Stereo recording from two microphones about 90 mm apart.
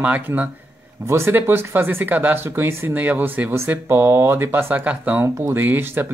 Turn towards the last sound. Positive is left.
turn(degrees=-25)  # may be behind; listen again after turning